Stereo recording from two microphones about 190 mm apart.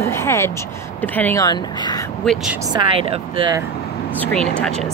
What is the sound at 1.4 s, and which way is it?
Speech, 20° left (ahead or behind).